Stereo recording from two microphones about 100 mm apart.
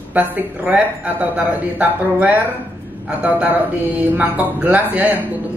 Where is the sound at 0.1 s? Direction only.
15° right (ahead or behind).